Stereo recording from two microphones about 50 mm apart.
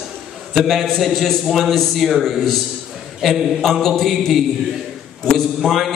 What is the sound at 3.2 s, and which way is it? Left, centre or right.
A man's voice, centre.